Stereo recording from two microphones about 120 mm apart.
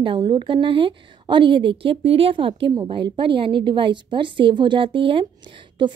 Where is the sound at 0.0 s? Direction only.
45° right (ahead or behind).